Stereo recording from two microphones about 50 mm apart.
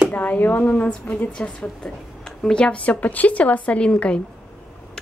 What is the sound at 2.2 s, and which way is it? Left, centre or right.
Speech, centre.